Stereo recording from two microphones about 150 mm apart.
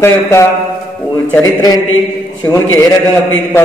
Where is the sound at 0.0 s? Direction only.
20° left (ahead or behind).